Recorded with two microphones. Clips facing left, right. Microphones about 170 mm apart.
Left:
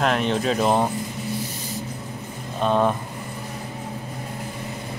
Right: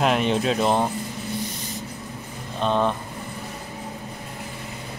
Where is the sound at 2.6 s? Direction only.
5° left (ahead or behind).